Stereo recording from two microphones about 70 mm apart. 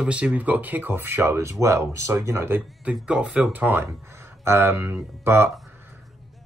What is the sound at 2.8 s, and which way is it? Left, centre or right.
Speech, centre.